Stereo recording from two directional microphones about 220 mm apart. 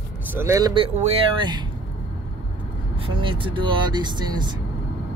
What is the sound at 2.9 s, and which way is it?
Speech, 25° right (ahead or behind).